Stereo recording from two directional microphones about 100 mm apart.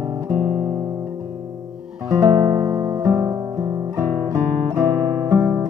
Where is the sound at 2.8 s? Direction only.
40° right (ahead or behind).